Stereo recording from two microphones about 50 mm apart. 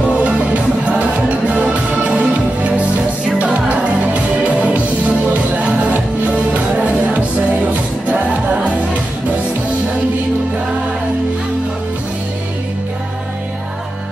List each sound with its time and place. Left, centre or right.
0.1 s music: right
1.5 s music: right